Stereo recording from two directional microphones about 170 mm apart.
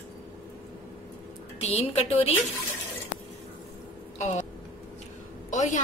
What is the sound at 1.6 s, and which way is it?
Speech, 40° left (ahead or behind).